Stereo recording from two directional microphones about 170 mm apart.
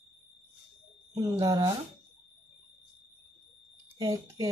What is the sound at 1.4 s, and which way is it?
Speech, 20° right (ahead or behind).